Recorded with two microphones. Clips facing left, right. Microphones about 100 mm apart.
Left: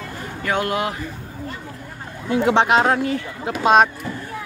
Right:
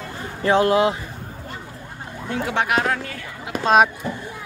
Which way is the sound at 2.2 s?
20° left (ahead or behind).